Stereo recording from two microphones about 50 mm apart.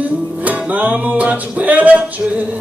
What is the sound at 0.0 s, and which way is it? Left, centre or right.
Music, right.